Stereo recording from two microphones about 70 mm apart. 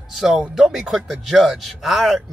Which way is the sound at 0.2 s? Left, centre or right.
Centre.